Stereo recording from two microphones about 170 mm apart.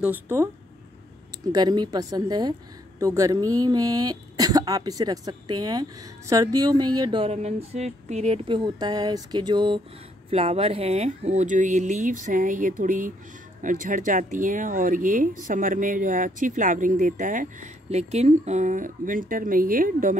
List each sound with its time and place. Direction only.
0.0 s speech: 10° right (ahead or behind)
1.4 s speech: 25° right (ahead or behind)
10.3 s speech: 35° right (ahead or behind); by 20.2 s 55° right (ahead or behind)